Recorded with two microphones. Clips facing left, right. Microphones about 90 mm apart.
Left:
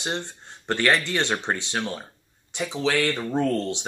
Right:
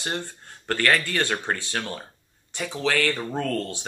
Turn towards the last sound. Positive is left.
turn(degrees=20)  # may be behind; listen again after turning